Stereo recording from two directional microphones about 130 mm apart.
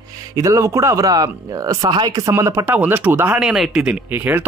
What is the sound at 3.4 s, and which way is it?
Speech, 5° right (ahead or behind).